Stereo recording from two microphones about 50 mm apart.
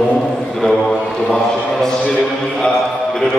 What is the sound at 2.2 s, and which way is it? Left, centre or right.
A man's voice, centre.